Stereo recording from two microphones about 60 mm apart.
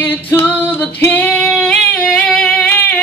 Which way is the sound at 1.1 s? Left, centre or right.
Left.